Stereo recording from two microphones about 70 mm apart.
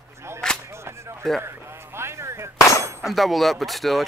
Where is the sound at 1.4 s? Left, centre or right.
Right.